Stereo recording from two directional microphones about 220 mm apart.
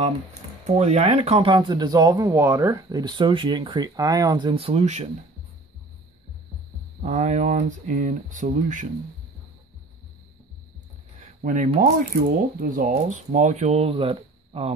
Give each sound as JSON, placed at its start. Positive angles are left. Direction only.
{"t": 0.0, "sound": "speech", "side_deg": -30}
{"t": 7.0, "sound": "speech", "side_deg": -35}
{"t": 11.4, "sound": "speech", "side_deg": -35}